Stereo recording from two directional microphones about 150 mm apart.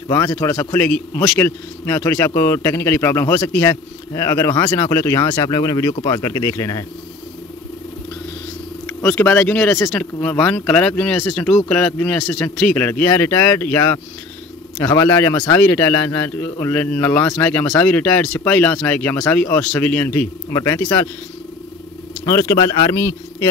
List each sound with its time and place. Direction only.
0.1 s speech: 20° left (ahead or behind)
0.7 s a man's voice: 5° left (ahead or behind); by 6.9 s 20° left (ahead or behind)
8.8 s a man's voice: 15° left (ahead or behind)
22.2 s speech: 25° left (ahead or behind)